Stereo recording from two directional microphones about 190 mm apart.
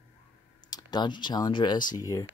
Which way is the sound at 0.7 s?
20° left (ahead or behind).